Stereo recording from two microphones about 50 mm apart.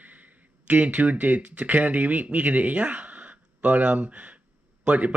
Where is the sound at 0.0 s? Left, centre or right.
Right.